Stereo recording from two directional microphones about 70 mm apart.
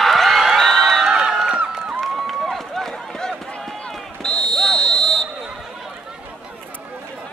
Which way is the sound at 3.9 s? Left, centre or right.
Centre.